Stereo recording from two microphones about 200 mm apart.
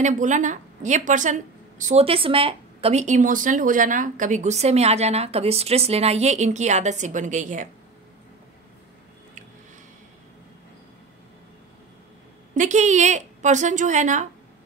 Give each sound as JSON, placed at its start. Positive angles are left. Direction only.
{"t": 0.0, "sound": "a woman's voice", "side_deg": -40}
{"t": 12.5, "sound": "a woman's voice", "side_deg": -35}